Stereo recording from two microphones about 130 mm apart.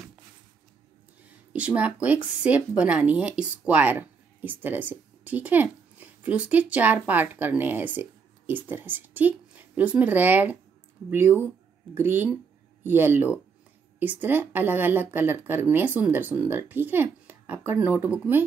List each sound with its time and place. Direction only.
1.5 s a woman's voice: 10° right (ahead or behind)